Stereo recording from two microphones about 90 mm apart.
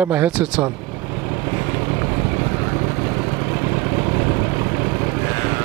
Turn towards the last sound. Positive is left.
turn(degrees=-20)  # may be behind; listen again after turning